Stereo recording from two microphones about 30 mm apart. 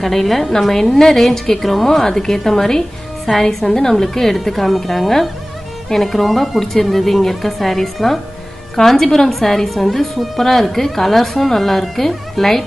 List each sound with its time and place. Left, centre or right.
0.0 s a woman's voice: centre
1.9 s a woman's voice: centre